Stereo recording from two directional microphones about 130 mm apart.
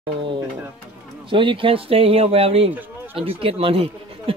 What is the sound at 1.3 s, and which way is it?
Speech, 40° right (ahead or behind).